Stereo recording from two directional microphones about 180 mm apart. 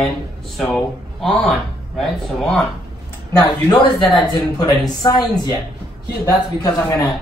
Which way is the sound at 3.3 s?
20° left (ahead or behind).